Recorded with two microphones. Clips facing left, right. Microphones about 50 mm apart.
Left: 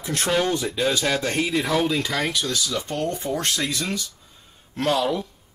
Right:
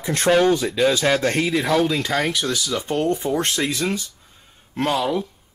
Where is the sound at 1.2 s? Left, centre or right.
Right.